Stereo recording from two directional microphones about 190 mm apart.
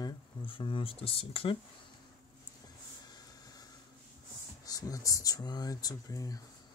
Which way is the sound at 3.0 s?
20° left (ahead or behind).